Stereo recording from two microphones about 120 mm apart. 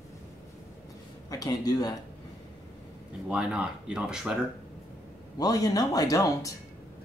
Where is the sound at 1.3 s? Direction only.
30° left (ahead or behind).